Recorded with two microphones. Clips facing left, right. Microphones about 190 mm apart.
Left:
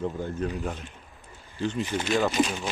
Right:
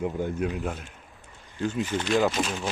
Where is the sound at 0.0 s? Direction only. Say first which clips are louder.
Right 2 dB; 15° right (ahead or behind).